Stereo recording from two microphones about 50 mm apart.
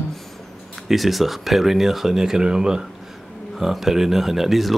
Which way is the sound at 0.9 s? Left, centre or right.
Centre.